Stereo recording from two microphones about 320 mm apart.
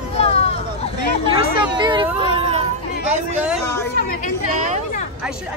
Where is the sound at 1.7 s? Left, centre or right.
Centre.